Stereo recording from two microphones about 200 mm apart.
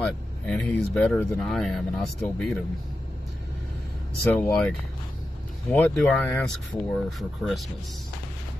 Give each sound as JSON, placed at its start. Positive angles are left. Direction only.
{"t": 0.0, "sound": "speech", "side_deg": 0}
{"t": 4.3, "sound": "speech", "side_deg": 5}